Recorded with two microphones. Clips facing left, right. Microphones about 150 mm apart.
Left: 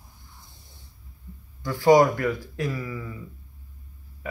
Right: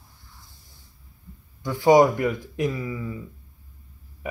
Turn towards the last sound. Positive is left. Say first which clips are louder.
# right 3 dB
turn(degrees=-20)  # may be behind; listen again after turning